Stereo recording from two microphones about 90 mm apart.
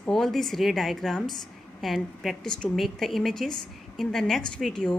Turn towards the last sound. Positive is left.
turn(degrees=5)  # may be behind; listen again after turning